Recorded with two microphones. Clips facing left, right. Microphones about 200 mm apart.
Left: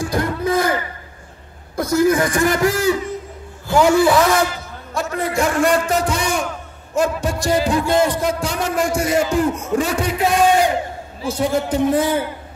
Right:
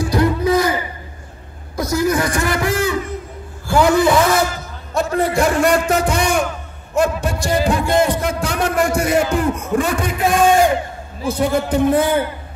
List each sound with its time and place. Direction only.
0.0 s a sound: 50° left (ahead or behind)
1.8 s a man's voice: 50° left (ahead or behind)
3.6 s a man's voice: 10° left (ahead or behind)
4.9 s a man's voice: 35° right (ahead or behind)
6.0 s music: 60° right (ahead or behind)
11.2 s a man's voice: 60° right (ahead or behind)